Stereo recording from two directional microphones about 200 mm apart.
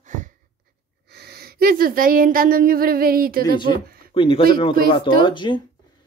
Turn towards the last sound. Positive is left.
turn(degrees=25)  # may be behind; listen again after turning